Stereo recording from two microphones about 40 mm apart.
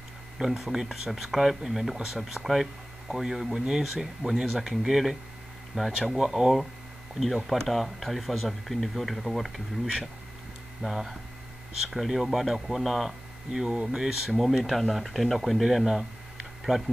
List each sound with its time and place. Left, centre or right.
0.4 s speech: centre
6.1 s speech: centre
10.9 s speech: centre
13.5 s speech: centre
14.6 s speech: centre